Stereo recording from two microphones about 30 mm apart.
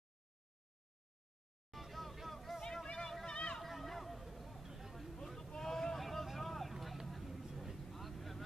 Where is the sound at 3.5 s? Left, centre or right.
Centre.